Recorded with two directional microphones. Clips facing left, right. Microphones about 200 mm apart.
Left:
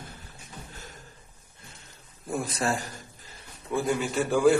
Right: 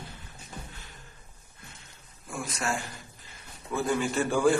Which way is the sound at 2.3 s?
35° left (ahead or behind).